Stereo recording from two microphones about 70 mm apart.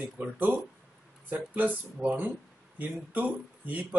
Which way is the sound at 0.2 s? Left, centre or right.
Right.